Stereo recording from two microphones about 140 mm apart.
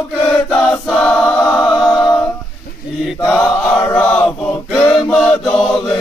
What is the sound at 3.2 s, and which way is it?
Chant, 10° left (ahead or behind).